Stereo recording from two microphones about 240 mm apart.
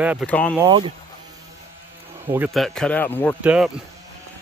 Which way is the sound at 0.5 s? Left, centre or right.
Centre.